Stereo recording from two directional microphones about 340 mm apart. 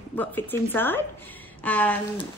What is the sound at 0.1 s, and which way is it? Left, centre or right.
Speech, centre.